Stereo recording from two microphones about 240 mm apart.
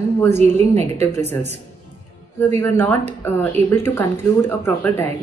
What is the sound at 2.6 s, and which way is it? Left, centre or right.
A woman's voice, centre.